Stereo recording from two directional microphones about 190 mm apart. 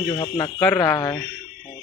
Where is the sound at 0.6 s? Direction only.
10° left (ahead or behind).